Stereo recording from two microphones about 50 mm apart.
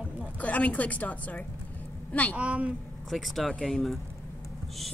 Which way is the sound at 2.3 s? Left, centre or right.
Right.